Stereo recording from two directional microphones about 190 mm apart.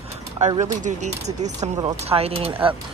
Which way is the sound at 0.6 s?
40° right (ahead or behind).